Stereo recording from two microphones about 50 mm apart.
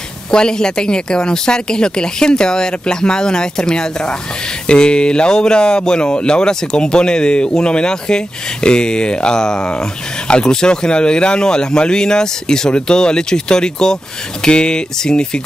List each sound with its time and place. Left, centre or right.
0.3 s speech: centre